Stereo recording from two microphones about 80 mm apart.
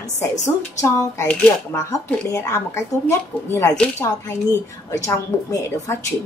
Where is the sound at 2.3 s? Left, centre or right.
Left.